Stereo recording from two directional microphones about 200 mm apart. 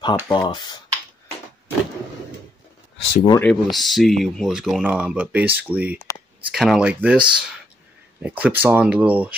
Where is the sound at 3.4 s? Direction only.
Centre (ahead or behind).